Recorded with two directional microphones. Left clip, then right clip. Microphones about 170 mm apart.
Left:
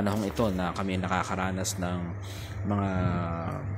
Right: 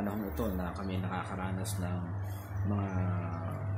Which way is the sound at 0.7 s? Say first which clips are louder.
Left 9 dB; 40° left (ahead or behind).